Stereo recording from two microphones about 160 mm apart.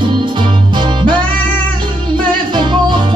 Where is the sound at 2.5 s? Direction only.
30° right (ahead or behind).